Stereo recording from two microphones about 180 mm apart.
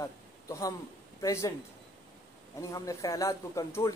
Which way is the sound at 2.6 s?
20° left (ahead or behind).